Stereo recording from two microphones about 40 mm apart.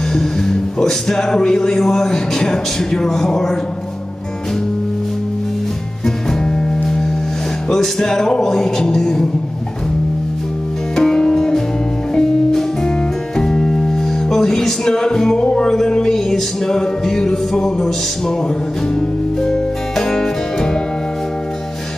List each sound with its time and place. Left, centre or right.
0.1 s speech: centre
6.0 s music: centre
7.7 s speech: centre
11.0 s music: centre
15.4 s speech: centre
18.9 s music: centre